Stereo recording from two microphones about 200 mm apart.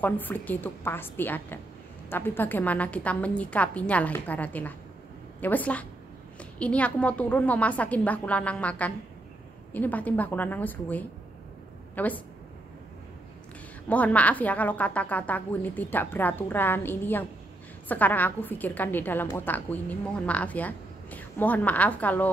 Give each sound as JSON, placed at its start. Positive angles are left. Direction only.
{"t": 0.0, "sound": "a woman's voice", "side_deg": 10}
{"t": 13.8, "sound": "a woman's voice", "side_deg": 5}